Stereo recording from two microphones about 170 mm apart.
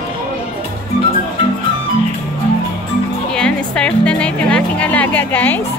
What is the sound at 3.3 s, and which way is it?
Speech, 5° left (ahead or behind).